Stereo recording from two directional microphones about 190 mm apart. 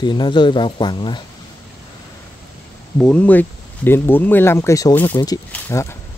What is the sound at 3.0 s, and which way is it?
Speech, 5° left (ahead or behind).